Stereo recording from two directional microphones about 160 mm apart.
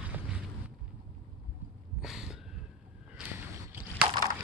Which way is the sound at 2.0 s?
5° right (ahead or behind).